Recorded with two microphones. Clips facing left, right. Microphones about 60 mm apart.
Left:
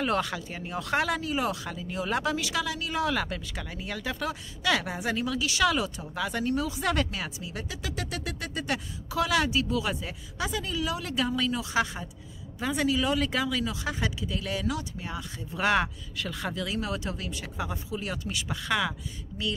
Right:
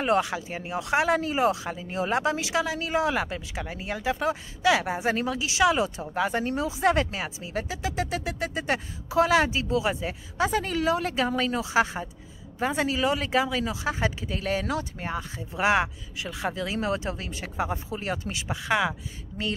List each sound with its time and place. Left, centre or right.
0.0 s speech: right
5.4 s speech: right
10.5 s speech: right
11.6 s speech: right
15.3 s speech: centre
16.4 s speech: right